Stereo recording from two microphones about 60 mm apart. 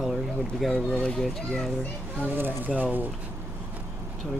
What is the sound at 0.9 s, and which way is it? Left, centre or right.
Speech, centre.